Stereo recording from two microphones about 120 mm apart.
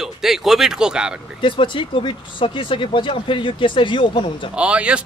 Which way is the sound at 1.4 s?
45° left (ahead or behind).